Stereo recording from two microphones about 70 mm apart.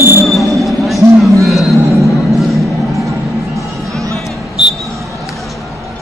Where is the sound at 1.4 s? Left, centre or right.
Centre.